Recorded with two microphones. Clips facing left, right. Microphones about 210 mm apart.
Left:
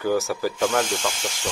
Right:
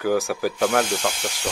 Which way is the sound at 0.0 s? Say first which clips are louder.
Right 1 dB; 10° right (ahead or behind).